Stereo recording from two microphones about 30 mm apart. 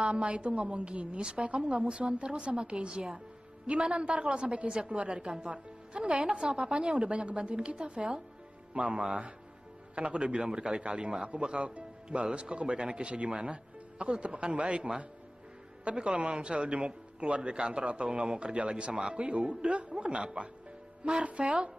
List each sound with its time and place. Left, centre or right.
0.0 s a man's voice: right
5.9 s a woman's voice: right
6.2 s a man's voice: right
21.2 s speech: right
21.5 s a man's voice: right